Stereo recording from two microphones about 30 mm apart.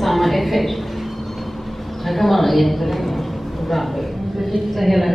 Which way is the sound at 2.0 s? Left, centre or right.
Centre.